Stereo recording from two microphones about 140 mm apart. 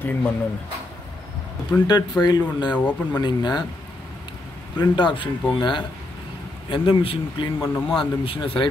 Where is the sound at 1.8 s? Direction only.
30° left (ahead or behind).